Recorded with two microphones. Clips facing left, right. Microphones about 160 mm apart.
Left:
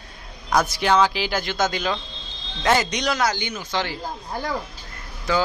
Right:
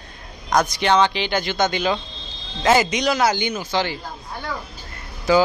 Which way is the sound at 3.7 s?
Centre (ahead or behind).